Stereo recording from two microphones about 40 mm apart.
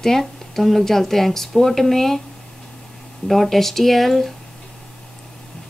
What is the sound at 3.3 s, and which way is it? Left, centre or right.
Speech, centre.